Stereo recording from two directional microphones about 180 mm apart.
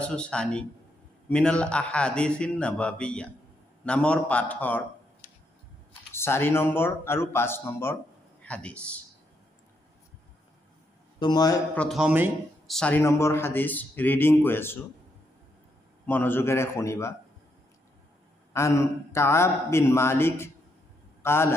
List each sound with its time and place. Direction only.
0.0 s a man's voice: 5° left (ahead or behind)
6.1 s speech: 15° left (ahead or behind)
11.1 s a man's voice: 25° left (ahead or behind)
11.7 s a man's voice: 5° left (ahead or behind)
12.7 s speech: 10° left (ahead or behind)
16.1 s speech: 10° left (ahead or behind)
18.5 s a man's voice: 15° left (ahead or behind)